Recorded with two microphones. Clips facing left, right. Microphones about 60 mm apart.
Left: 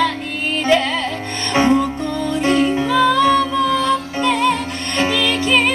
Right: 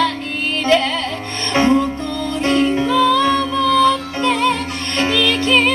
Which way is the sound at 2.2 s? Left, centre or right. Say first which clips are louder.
Even; centre.